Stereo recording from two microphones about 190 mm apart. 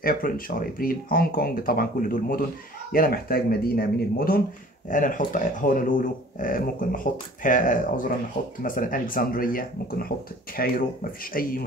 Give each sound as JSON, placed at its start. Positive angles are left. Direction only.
{"t": 0.0, "sound": "speech", "side_deg": 50}